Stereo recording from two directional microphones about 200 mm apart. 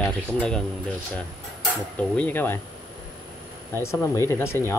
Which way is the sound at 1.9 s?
5° left (ahead or behind).